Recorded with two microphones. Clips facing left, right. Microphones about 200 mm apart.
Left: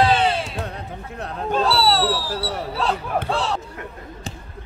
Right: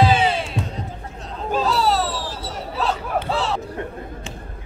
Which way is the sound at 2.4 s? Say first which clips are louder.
Left 4 dB; 65° left (ahead or behind).